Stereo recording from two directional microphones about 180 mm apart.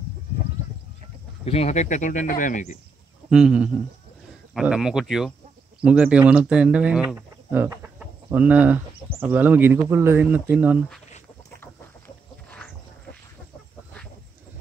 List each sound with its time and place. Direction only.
1.4 s speech: 35° left (ahead or behind)
3.3 s speech: 5° right (ahead or behind)